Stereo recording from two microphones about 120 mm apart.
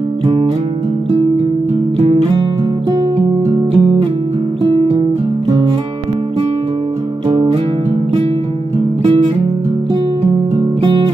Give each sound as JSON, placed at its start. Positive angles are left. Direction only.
{"t": 2.0, "sound": "music", "side_deg": -55}